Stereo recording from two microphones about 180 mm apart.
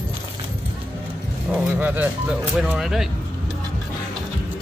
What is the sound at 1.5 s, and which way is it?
Music, 10° right (ahead or behind).